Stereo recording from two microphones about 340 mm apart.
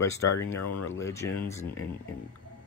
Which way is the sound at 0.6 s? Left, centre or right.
Left.